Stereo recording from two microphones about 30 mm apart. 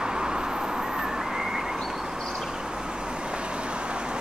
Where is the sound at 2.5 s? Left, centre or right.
Right.